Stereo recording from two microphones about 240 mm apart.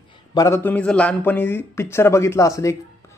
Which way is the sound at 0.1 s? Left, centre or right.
Centre.